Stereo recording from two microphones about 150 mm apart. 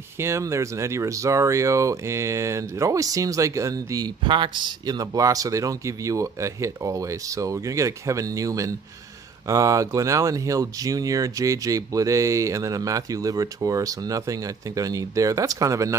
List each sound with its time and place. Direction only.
0.2 s speech: 20° right (ahead or behind)